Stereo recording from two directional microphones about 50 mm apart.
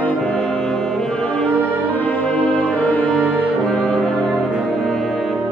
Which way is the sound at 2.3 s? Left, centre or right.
Left.